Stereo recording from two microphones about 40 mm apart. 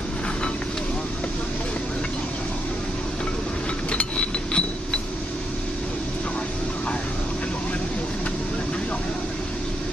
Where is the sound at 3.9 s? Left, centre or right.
Left.